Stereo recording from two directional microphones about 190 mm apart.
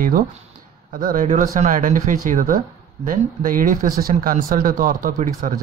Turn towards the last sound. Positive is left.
turn(degrees=-45)  # may be behind; listen again after turning